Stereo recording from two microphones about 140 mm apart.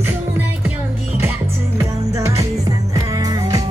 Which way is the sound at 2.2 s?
20° right (ahead or behind).